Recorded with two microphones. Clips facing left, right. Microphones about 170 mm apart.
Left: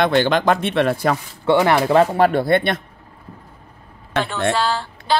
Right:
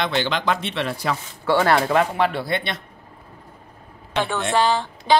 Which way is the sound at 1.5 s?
20° left (ahead or behind).